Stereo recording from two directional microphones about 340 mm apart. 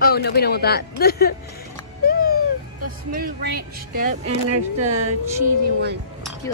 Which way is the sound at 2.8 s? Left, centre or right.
Right.